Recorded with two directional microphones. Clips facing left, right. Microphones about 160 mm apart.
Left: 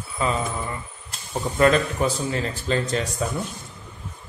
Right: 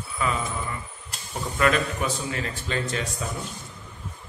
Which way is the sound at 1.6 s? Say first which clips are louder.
Left 4 dB; 35° left (ahead or behind).